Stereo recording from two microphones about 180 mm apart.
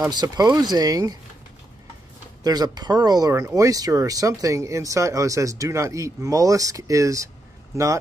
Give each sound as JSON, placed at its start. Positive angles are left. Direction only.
{"t": 0.0, "sound": "speech", "side_deg": -20}
{"t": 2.4, "sound": "speech", "side_deg": -20}